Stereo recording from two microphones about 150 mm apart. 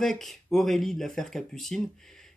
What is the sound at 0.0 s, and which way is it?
Speech, centre (ahead or behind).